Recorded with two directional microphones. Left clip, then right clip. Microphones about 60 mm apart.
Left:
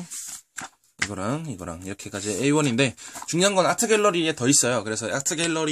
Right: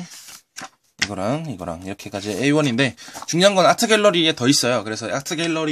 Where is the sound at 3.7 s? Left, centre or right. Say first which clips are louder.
Right 5 dB; centre.